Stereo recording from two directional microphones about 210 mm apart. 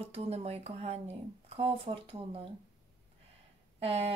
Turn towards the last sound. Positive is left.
turn(degrees=-30)  # may be behind; listen again after turning